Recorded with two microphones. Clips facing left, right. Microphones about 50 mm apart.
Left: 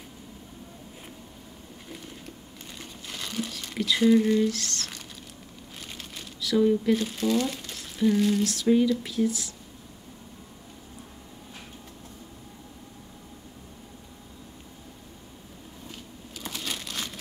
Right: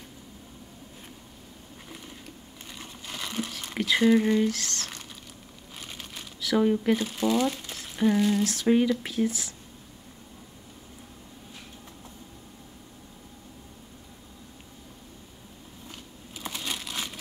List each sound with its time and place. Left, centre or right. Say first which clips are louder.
2.8 s crumpling: right 1 dB; centre
3.6 s a sound: right 2 dB; right
4.0 s patter: left 1 dB; right
6.4 s speech: left 1 dB; right
7.0 s speech: right 1 dB; centre
7.7 s a sound: left 3 dB; right
8.2 s speech: even; centre
8.5 s speech: left 1 dB; right
16.3 s crumpling: right 1 dB; centre